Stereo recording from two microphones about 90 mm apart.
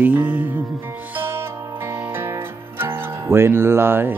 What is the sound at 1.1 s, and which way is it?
Music, 20° right (ahead or behind).